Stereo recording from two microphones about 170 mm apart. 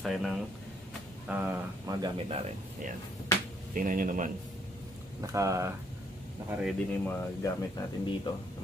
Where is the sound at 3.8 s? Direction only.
50° right (ahead or behind).